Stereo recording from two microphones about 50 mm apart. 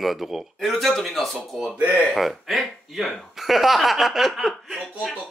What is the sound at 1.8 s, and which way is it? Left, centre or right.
Speech, right.